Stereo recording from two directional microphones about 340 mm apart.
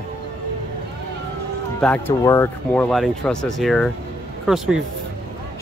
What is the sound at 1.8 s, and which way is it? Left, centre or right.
Speech, centre.